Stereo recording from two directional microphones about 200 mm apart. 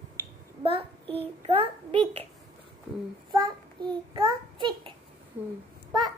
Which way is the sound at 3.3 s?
20° right (ahead or behind).